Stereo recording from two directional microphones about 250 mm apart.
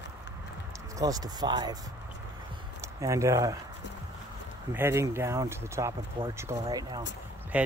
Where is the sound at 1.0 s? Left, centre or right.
Centre.